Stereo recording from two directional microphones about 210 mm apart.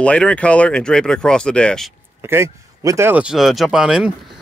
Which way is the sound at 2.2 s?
10° right (ahead or behind).